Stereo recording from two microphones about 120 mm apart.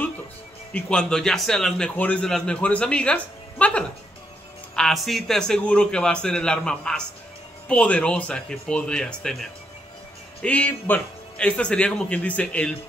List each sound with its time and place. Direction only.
0.7 s a man's voice: 10° left (ahead or behind)